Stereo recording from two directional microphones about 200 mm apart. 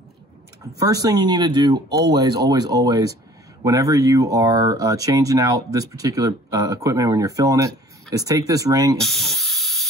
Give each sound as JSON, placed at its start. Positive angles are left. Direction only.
{"t": 0.7, "sound": "speech", "side_deg": -20}
{"t": 9.0, "sound": "spray", "side_deg": 0}